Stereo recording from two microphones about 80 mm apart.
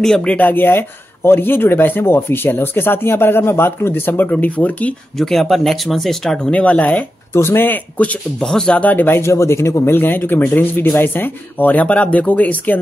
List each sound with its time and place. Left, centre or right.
0.0 s speech: centre
5.1 s speech: centre
6.5 s speech: centre
7.3 s speech: left
9.9 s speech: left